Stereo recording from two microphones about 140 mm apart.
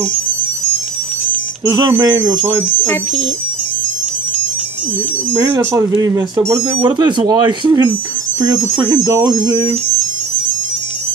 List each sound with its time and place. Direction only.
1.6 s speech: 25° right (ahead or behind)
5.4 s speech: 25° right (ahead or behind)